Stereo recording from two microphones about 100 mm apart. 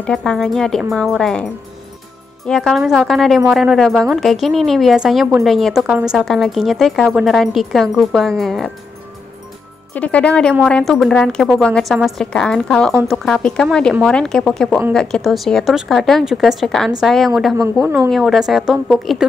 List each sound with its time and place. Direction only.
0.0 s a woman's voice: 5° left (ahead or behind)
9.9 s a woman's voice: 15° left (ahead or behind)
17.8 s a woman's voice: 25° right (ahead or behind)
18.1 s a woman's voice: centre (ahead or behind)